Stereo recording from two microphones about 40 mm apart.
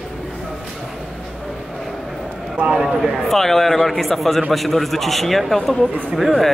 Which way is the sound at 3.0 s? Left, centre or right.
Centre.